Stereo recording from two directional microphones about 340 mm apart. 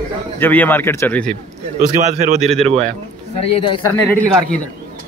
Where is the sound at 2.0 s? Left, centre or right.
Centre.